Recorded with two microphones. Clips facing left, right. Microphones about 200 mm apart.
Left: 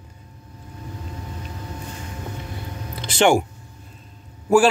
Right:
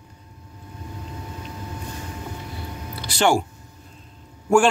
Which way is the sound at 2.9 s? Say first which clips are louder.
Left 3 dB; 20° left (ahead or behind).